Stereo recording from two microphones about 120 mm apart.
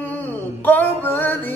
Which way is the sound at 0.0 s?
15° left (ahead or behind).